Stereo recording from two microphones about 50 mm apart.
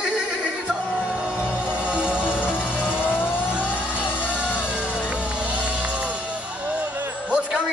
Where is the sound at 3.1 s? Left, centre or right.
Left.